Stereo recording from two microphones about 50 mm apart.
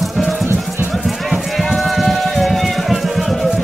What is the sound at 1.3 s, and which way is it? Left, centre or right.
Music, centre.